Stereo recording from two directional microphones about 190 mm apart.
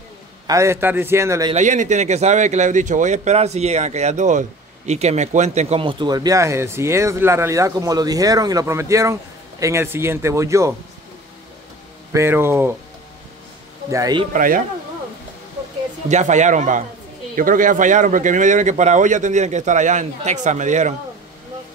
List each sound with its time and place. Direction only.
0.5 s a man's voice: 15° right (ahead or behind)
1.5 s speech: 40° right (ahead or behind); by 10.7 s 15° right (ahead or behind)
12.1 s a man's voice: 15° right (ahead or behind)
13.8 s a man's voice: 20° right (ahead or behind)
14.3 s speech: 45° right (ahead or behind)
16.1 s speech: 40° right (ahead or behind)